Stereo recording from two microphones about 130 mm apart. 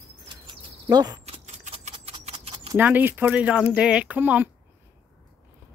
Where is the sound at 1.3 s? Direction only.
55° right (ahead or behind).